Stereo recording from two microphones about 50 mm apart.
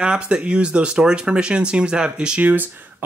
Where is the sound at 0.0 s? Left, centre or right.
Centre.